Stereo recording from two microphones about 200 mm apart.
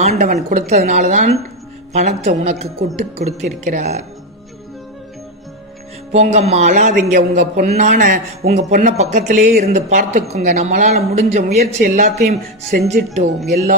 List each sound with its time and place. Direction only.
0.0 s a man's voice: 35° right (ahead or behind)
6.1 s a man's voice: 30° right (ahead or behind)